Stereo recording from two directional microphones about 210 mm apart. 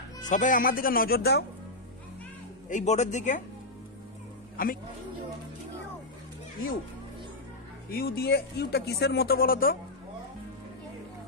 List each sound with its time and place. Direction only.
0.2 s speech: 35° left (ahead or behind)
2.7 s speech: 35° left (ahead or behind)
4.6 s speech: 40° left (ahead or behind)
7.9 s speech: 45° left (ahead or behind)